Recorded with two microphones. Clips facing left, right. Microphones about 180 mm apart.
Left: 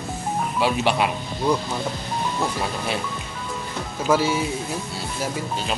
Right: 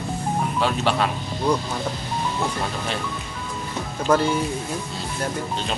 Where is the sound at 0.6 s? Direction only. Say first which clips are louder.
Left 2 dB; 10° left (ahead or behind).